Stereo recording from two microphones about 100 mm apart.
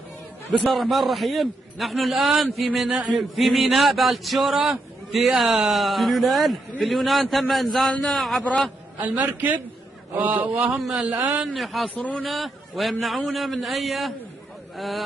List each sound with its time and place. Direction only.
0.7 s a man's voice: centre (ahead or behind)
9.0 s a man's voice: 15° right (ahead or behind)
10.6 s a man's voice: centre (ahead or behind)
11.9 s a man's voice: 15° left (ahead or behind)
12.3 s a man's voice: centre (ahead or behind)